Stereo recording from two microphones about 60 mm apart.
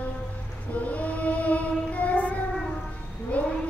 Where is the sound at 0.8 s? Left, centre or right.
Left.